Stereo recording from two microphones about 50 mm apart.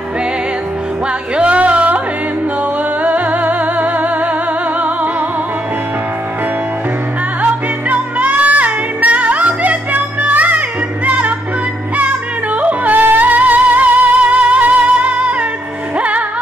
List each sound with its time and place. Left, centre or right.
1.3 s music: right
3.0 s music: right
7.9 s music: right
12.5 s music: right